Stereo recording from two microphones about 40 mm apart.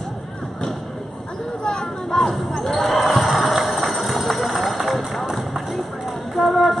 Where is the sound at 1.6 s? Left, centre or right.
Centre.